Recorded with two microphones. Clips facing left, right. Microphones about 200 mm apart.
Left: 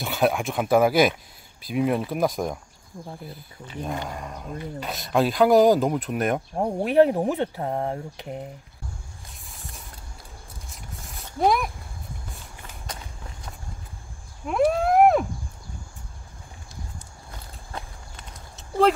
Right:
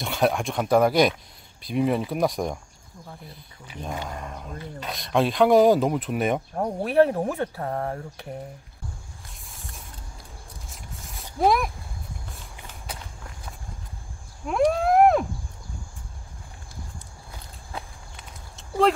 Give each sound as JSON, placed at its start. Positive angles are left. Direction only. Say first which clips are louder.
{"t": 0.0, "sound": "speech", "louder": "left 1 dB", "side_deg": 0}
{"t": 4.1, "sound": "speech", "louder": "left 1 dB", "side_deg": 0}
{"t": 6.6, "sound": "speech", "louder": "left 2 dB", "side_deg": 15}
{"t": 9.5, "sound": "a sound", "louder": "left 1 dB", "side_deg": 0}
{"t": 10.7, "sound": "zipper", "louder": "left 1 dB", "side_deg": 0}
{"t": 14.4, "sound": "wild animals", "louder": "even", "side_deg": 0}
{"t": 17.7, "sound": "walk", "louder": "even", "side_deg": 0}